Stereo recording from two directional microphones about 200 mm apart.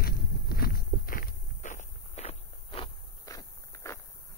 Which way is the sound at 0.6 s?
50° left (ahead or behind).